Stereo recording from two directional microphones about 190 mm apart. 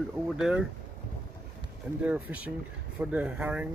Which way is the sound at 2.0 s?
10° right (ahead or behind).